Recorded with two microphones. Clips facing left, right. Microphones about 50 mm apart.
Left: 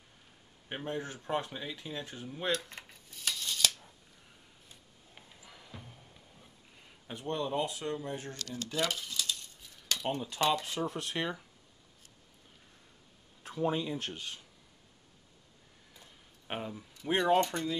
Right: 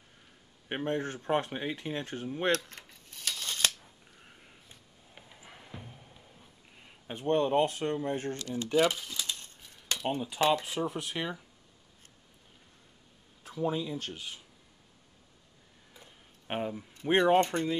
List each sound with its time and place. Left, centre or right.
0.7 s speech: right
3.3 s scissors: right
4.4 s a sound: right
5.4 s music: right
6.8 s speech: right
8.4 s speech: right; by 11.4 s centre
13.4 s a sound: centre
13.7 s speech: centre
14.1 s speech: centre
15.9 s a sound: centre
16.9 s speech: right